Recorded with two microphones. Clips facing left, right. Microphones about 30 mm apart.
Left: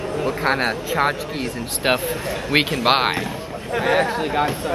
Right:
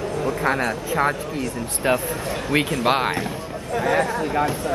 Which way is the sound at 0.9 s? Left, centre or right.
Left.